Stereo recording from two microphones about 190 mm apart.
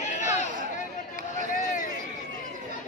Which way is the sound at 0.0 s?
40° left (ahead or behind).